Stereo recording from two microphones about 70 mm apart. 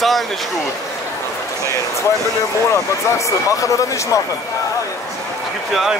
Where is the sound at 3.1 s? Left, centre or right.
Left.